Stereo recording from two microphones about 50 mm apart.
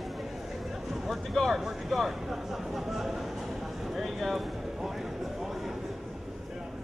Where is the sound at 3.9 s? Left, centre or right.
Centre.